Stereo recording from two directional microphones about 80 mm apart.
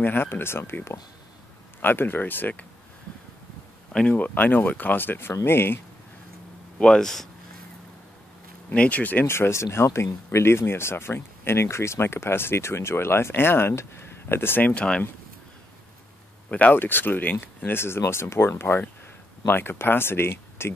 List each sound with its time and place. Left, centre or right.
0.0 s speech: left
3.9 s speech: centre
6.8 s speech: centre
8.6 s speech: centre
16.4 s speech: centre